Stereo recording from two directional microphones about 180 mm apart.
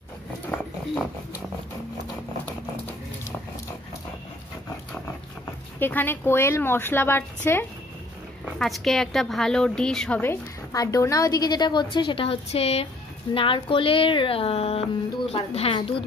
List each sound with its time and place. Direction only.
5.8 s a woman's voice: 10° left (ahead or behind)
8.5 s a woman's voice: centre (ahead or behind); by 15.9 s 30° left (ahead or behind)